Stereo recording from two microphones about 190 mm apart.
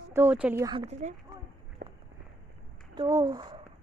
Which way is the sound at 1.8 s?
45° right (ahead or behind).